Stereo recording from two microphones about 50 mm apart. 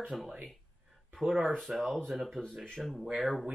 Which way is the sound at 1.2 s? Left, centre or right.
Centre.